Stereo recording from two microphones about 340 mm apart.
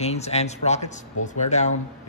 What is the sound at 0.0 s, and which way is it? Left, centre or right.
Speech, centre.